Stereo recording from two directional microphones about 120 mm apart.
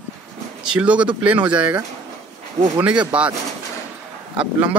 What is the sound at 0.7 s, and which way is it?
Speech, 10° right (ahead or behind).